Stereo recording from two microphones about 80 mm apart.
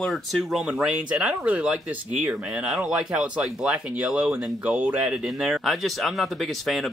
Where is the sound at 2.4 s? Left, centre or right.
Centre.